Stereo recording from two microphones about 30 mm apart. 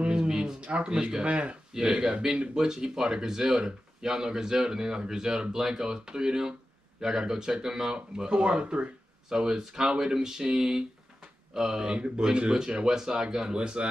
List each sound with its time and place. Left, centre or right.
0.0 s a sound: right
0.6 s a sound: right
0.8 s speech: right
1.2 s speech: right
1.7 s speech: centre; by 8.8 s right
9.3 s speech: right
11.5 s speech: right
13.6 s speech: right